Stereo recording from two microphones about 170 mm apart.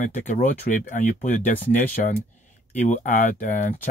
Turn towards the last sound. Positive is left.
turn(degrees=50)  # may be behind; listen again after turning